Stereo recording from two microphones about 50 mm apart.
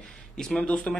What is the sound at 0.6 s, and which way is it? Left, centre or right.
Speech, left.